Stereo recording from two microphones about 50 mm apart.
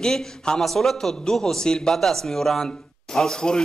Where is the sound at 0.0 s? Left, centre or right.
Centre.